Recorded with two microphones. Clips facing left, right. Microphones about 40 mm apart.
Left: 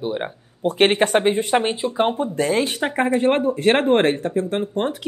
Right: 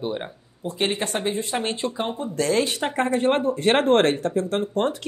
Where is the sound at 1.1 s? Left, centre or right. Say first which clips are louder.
Left 8 dB; left.